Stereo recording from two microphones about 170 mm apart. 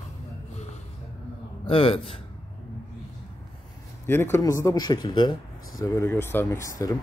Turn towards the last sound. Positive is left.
turn(degrees=20)  # may be behind; listen again after turning